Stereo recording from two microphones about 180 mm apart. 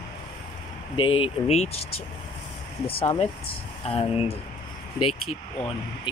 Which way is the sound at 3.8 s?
30° left (ahead or behind).